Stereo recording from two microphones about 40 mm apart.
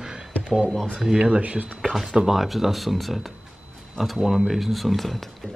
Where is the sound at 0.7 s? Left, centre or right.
Centre.